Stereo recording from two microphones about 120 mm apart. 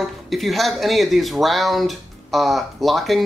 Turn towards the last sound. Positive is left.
turn(degrees=0)  # may be behind; listen again after turning